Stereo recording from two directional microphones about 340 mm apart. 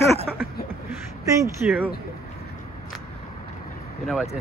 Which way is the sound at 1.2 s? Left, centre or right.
Centre.